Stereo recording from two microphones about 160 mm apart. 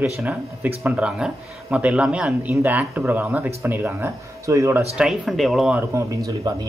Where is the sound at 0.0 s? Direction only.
10° right (ahead or behind).